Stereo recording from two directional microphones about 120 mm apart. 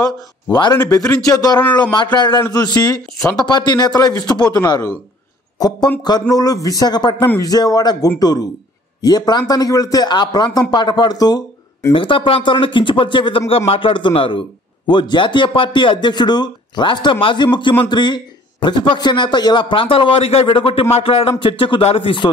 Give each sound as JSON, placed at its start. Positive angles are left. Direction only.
{"t": 0.0, "sound": "speech", "side_deg": 35}
{"t": 1.6, "sound": "a man's voice", "side_deg": 15}
{"t": 2.1, "sound": "speech", "side_deg": 35}
{"t": 6.0, "sound": "speech", "side_deg": 35}
{"t": 11.9, "sound": "speech", "side_deg": 45}